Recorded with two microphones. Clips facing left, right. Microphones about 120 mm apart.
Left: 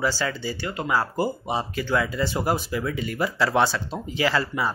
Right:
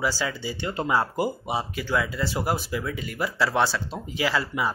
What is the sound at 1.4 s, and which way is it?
Speech, 10° right (ahead or behind).